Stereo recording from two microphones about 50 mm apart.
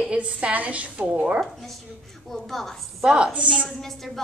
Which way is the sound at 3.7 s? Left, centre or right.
Centre.